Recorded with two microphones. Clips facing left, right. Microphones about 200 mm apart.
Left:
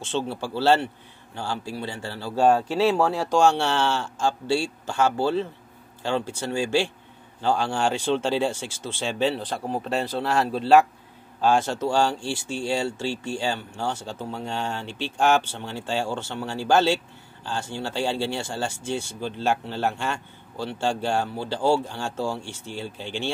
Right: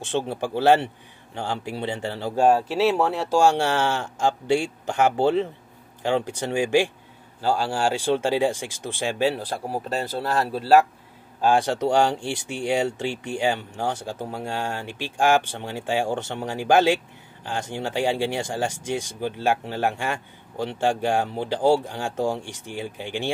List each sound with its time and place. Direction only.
0.2 s speech: 15° right (ahead or behind)
11.4 s speech: 15° right (ahead or behind)